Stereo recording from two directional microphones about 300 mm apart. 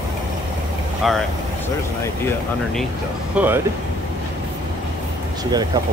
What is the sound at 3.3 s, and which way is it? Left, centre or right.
Speech, centre.